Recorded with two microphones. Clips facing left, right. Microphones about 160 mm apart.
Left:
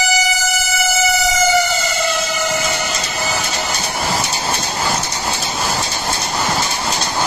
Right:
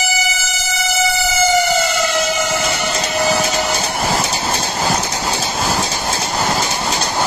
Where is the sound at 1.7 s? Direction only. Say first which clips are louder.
Right 3 dB; 50° right (ahead or behind).